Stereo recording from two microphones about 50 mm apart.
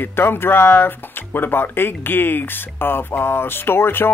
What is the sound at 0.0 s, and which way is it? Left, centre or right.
Speech, left.